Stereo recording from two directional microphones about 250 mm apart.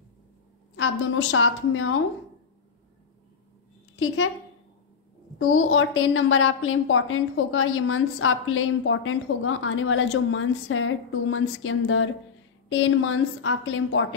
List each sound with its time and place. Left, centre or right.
0.7 s a woman's voice: left
5.4 s a woman's voice: left